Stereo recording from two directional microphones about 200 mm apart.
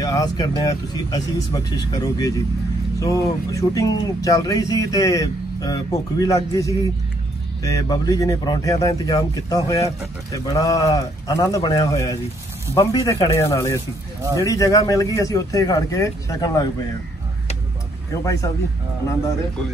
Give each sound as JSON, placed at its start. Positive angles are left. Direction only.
{"t": 0.0, "sound": "speech", "side_deg": 20}
{"t": 18.2, "sound": "speech", "side_deg": 15}